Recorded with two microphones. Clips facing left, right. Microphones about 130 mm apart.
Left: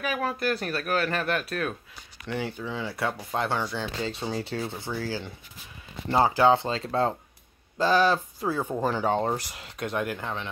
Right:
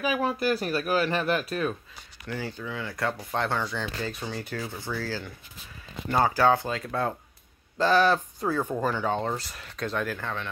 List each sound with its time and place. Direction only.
0.0 s speech: centre (ahead or behind)
2.8 s speech: 10° left (ahead or behind)
4.0 s speech: 25° left (ahead or behind)
7.7 s speech: 15° left (ahead or behind)